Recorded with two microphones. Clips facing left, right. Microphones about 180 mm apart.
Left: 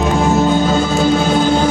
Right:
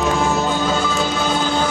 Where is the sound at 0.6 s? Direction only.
45° left (ahead or behind).